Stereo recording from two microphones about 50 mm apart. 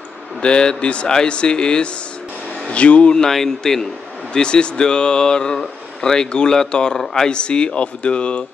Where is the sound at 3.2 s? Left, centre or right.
Centre.